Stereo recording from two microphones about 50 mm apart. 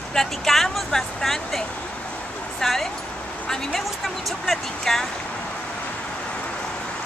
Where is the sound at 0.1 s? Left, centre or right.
Centre.